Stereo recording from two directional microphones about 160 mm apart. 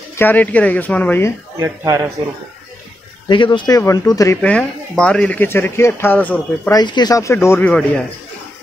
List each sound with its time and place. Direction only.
0.2 s speech: 10° left (ahead or behind)
1.6 s speech: 20° right (ahead or behind)
3.3 s speech: 30° left (ahead or behind)
4.4 s speech: 5° left (ahead or behind)
6.7 s speech: 25° left (ahead or behind); by 8.0 s 10° left (ahead or behind)